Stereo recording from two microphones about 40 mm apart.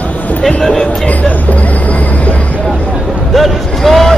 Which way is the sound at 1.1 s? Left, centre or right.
Left.